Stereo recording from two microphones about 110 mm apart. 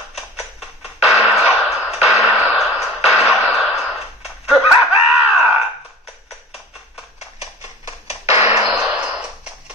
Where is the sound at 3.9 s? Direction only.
Centre (ahead or behind).